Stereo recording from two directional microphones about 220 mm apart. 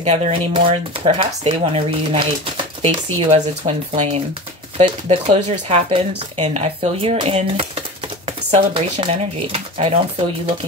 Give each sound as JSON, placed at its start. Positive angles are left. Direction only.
{"t": 0.0, "sound": "speech", "side_deg": -30}